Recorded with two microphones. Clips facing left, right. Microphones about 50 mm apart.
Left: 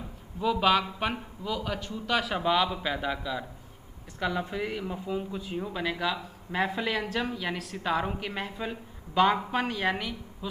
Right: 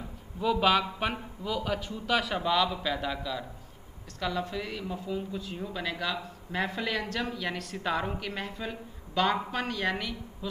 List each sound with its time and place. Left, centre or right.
0.4 s a man's voice: centre
2.4 s speech: centre